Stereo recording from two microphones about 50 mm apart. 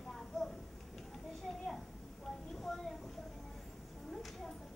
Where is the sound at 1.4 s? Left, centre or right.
Centre.